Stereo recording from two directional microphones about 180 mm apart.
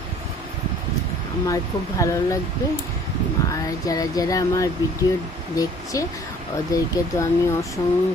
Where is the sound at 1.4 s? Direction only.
15° left (ahead or behind).